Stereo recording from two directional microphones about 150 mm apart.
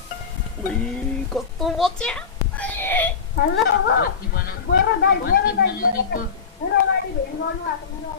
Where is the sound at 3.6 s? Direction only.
85° left.